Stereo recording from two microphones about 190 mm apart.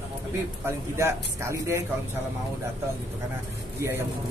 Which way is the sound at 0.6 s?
15° right (ahead or behind).